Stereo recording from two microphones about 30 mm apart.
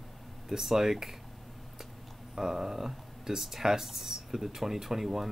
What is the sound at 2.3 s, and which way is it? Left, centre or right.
Speech, centre.